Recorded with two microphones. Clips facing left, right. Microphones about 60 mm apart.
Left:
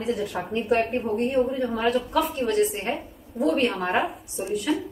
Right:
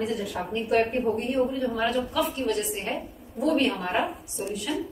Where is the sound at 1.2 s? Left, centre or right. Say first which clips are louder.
Left 3 dB; left.